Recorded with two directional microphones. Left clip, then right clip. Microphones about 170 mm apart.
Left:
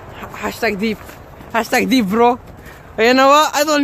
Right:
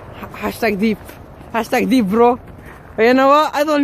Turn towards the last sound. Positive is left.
turn(degrees=5)  # may be behind; listen again after turning